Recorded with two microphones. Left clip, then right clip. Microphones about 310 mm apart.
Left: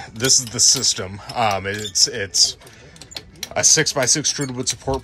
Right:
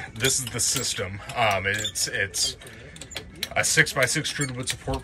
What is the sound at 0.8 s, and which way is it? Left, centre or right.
Speech, centre.